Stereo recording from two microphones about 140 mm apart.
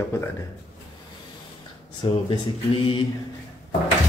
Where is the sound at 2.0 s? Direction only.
35° left (ahead or behind).